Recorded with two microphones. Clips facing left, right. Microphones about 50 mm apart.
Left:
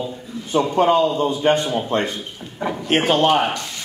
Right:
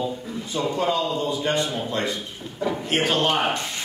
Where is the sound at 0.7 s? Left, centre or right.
Left.